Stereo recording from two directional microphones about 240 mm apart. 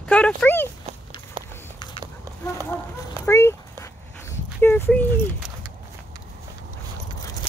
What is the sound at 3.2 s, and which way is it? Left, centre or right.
Dog, centre.